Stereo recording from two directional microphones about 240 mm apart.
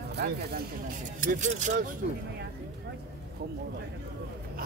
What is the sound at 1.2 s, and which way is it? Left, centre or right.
Speech, right.